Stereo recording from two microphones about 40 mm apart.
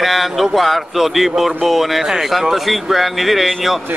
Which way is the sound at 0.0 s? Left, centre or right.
Centre.